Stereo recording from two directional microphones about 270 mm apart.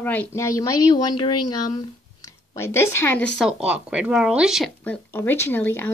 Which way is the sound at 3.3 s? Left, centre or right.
Centre.